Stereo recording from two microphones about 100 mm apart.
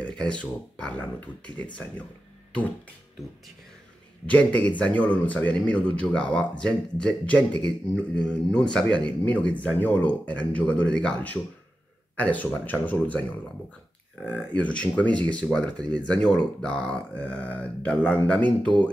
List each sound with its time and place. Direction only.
0.0 s speech: 10° left (ahead or behind)
4.3 s speech: 15° left (ahead or behind)
14.2 s speech: 15° left (ahead or behind)